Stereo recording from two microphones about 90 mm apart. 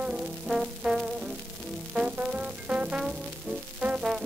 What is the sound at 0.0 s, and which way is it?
Music, 5° right (ahead or behind).